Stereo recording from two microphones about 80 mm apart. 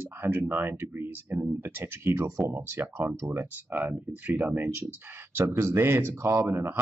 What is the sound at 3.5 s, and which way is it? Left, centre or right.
Speech, right.